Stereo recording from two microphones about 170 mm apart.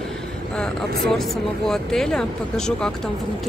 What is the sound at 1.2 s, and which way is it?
Speech, centre (ahead or behind).